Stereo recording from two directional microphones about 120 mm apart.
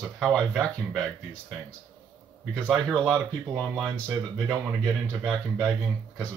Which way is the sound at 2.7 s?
5° left (ahead or behind).